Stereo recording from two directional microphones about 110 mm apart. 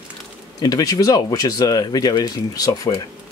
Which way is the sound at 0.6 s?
35° left (ahead or behind).